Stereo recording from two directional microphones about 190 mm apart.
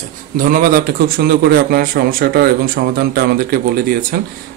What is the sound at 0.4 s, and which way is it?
Speech, 45° right (ahead or behind).